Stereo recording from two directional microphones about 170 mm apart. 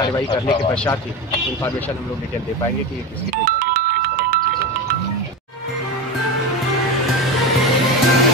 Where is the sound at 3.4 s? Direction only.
60° right (ahead or behind).